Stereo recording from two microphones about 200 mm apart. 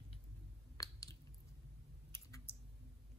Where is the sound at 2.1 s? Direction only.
10° left (ahead or behind).